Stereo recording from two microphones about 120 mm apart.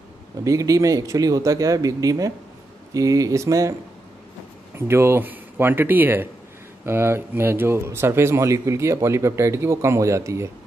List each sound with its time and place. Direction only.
0.4 s a man's voice: 25° right (ahead or behind)
4.7 s a man's voice: 20° right (ahead or behind)